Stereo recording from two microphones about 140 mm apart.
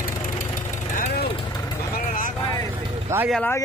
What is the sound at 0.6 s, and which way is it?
Engine, 75° left (ahead or behind).